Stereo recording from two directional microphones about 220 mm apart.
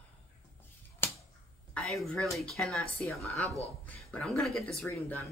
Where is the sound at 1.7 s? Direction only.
5° left (ahead or behind).